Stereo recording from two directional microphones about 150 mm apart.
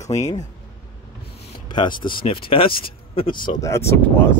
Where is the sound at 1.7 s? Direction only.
30° left (ahead or behind).